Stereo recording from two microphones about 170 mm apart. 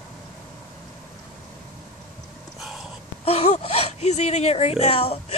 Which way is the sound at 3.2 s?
40° left (ahead or behind).